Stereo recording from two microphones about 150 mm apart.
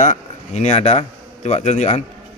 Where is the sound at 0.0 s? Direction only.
55° left (ahead or behind).